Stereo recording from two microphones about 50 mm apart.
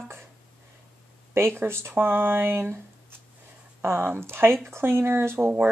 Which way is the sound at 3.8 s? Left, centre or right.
Right.